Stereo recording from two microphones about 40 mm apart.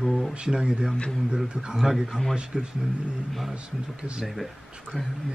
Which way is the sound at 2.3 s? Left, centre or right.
Right.